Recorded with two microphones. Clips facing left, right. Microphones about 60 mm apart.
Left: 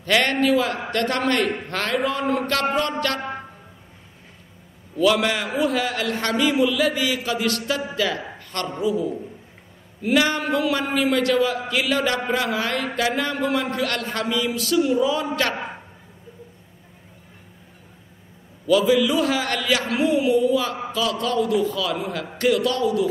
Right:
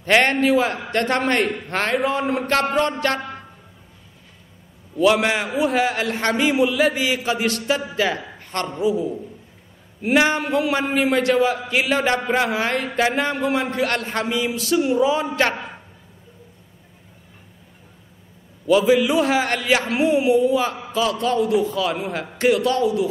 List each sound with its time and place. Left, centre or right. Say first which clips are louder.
0.0 s a man's voice: right 3 dB; right
3.2 s a sound: left 2 dB; centre
4.9 s a man's voice: right 2 dB; right
8.4 s a sound: right 3 dB; right
8.8 s a man's voice: right 1 dB; right
18.7 s a man's voice: right 2 dB; right